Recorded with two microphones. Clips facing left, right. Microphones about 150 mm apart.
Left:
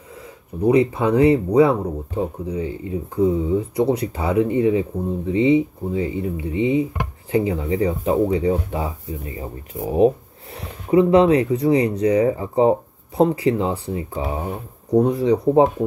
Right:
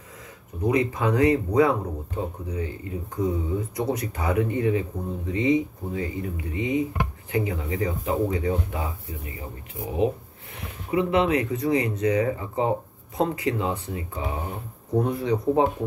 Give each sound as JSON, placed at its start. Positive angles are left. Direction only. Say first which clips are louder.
{"t": 0.7, "sound": "speech", "louder": "left 6 dB", "side_deg": 30}